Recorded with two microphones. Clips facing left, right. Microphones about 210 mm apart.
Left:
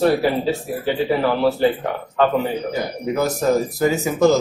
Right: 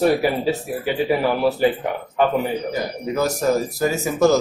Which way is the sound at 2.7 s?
20° left (ahead or behind).